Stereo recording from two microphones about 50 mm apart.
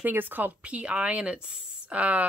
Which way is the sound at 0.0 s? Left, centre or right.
Right.